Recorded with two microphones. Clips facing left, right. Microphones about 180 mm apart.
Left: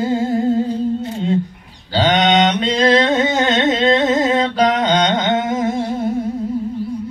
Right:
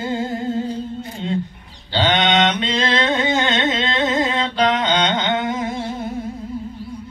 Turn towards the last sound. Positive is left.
turn(degrees=40)  # may be behind; listen again after turning